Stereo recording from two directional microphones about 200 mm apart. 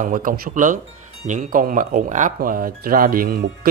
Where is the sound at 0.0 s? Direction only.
40° right (ahead or behind).